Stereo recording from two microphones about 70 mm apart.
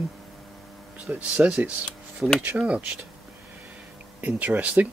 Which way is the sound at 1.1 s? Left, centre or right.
Right.